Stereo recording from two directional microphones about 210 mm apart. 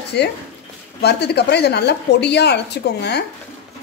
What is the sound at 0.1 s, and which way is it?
Speech, 55° left (ahead or behind).